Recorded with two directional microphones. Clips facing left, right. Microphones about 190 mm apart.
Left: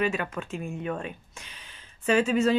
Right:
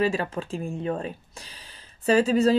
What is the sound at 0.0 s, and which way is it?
Speech, 30° right (ahead or behind).